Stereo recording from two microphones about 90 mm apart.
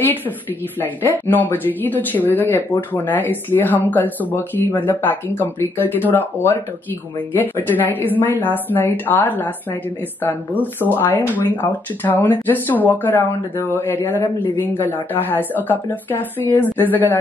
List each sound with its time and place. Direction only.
0.0 s speech: 20° left (ahead or behind)
10.6 s speech: 20° left (ahead or behind)